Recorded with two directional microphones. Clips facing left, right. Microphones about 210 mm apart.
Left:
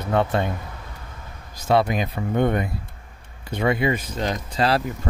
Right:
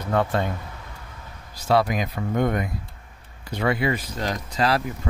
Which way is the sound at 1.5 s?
20° left (ahead or behind).